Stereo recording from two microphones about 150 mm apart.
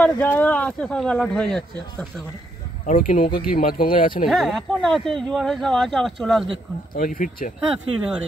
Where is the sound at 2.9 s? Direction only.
65° left (ahead or behind).